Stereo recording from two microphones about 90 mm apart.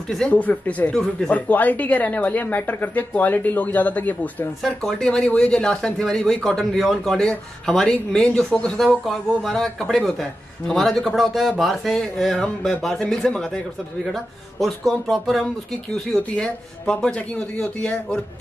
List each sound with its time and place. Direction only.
0.3 s speech: 15° left (ahead or behind)
4.6 s speech: 5° left (ahead or behind)